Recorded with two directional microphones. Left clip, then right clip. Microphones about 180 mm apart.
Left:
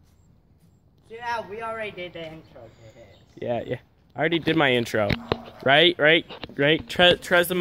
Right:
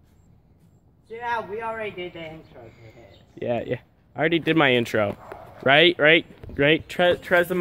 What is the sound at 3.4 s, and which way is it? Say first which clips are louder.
Speech: right 2 dB; centre (ahead or behind).